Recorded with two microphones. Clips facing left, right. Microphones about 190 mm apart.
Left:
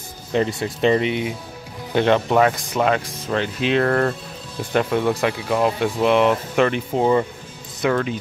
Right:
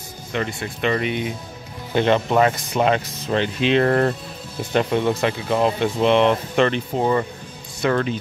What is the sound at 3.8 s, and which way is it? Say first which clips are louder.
Speech: right 1 dB; 15° right (ahead or behind).